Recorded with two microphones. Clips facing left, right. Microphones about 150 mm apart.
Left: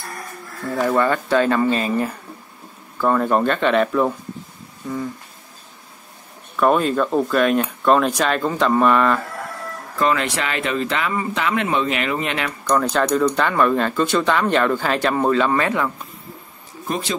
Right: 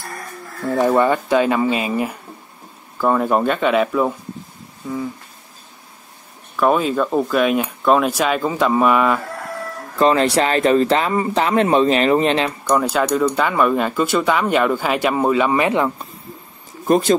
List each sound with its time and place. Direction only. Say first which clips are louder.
0.7 s speech: right 3 dB; 20° right (ahead or behind); by 5.1 s 5° right (ahead or behind)
6.5 s speech: even; centre (ahead or behind)
9.9 s speech: right 5 dB; 30° right (ahead or behind)
12.6 s speech: left 1 dB; 10° right (ahead or behind)
16.8 s speech: right 10 dB; 45° right (ahead or behind)